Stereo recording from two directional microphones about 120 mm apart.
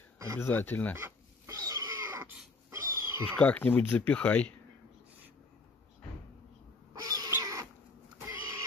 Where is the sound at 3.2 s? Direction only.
10° left (ahead or behind).